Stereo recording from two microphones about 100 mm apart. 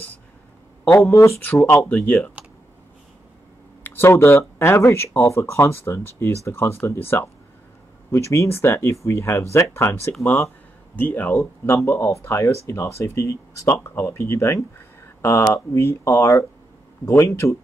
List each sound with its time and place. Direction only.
0.8 s speech: 25° left (ahead or behind)
1.5 s speech: 15° left (ahead or behind)
2.4 s computer keyboard: 10° right (ahead or behind)
3.8 s speech: 25° left (ahead or behind)
11.0 s speech: 15° left (ahead or behind)
11.3 s speech: 25° left (ahead or behind)